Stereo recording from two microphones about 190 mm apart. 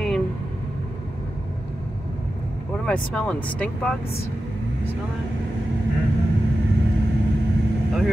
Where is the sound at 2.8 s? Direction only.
5° left (ahead or behind).